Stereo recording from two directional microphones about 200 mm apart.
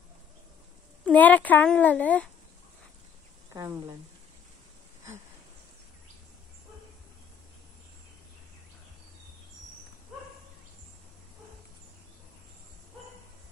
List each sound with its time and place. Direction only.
1.0 s a child's voice: 10° left (ahead or behind)
3.5 s speech: 20° right (ahead or behind)